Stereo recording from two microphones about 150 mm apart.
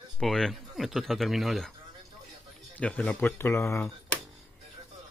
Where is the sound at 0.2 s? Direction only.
Centre (ahead or behind).